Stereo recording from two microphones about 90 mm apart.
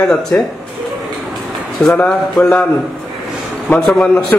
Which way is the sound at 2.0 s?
5° left (ahead or behind).